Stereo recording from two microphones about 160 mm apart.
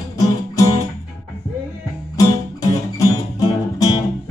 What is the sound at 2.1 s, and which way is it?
Music, 20° left (ahead or behind).